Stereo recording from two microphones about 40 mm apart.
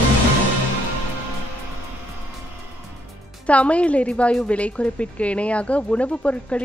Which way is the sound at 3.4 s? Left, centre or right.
Left.